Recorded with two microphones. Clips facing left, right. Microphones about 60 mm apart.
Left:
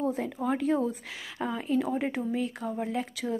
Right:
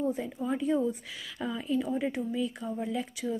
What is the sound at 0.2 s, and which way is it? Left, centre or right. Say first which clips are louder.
Speech: left 2 dB; left.